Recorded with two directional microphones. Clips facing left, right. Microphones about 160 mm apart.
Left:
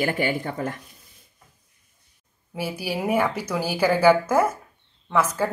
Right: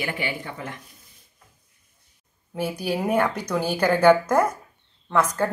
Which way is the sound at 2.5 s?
5° left (ahead or behind).